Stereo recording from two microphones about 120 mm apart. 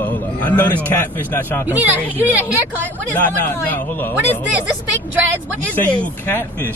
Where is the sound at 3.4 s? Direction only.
15° left (ahead or behind).